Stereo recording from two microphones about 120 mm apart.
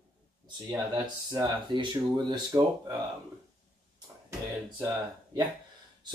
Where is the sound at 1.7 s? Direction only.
40° right (ahead or behind).